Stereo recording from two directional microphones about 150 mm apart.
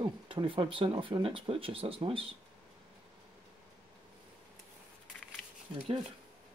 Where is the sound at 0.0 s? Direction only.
35° right (ahead or behind).